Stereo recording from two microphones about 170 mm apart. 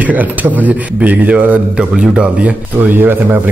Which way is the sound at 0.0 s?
10° right (ahead or behind).